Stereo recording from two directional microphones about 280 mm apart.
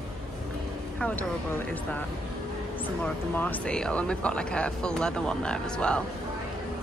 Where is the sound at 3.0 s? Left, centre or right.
Centre.